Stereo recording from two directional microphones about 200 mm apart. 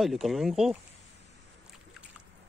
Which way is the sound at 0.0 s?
Centre (ahead or behind).